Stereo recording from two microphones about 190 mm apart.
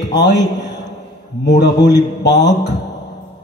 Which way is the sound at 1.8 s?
65° left (ahead or behind).